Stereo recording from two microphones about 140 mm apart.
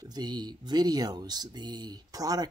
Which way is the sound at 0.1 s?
30° right (ahead or behind).